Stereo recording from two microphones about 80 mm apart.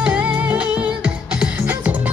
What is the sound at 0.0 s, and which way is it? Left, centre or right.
Music, centre.